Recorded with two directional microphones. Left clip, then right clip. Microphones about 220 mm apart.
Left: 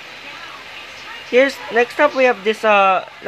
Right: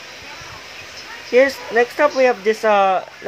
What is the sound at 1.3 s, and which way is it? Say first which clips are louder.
Speech: even; 5° right (ahead or behind).